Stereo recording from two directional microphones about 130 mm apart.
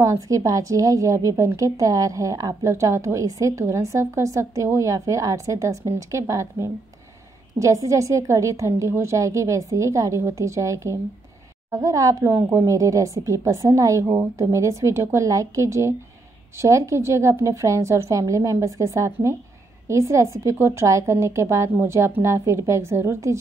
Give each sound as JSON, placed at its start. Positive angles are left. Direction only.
{"t": 0.0, "sound": "a woman's voice", "side_deg": -25}